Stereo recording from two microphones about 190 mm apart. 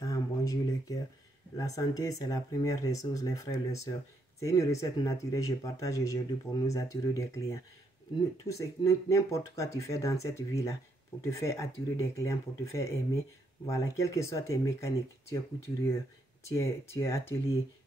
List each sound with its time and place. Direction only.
0.0 s a sound: 15° left (ahead or behind)
1.6 s speech: 20° left (ahead or behind)
16.4 s speech: 15° left (ahead or behind)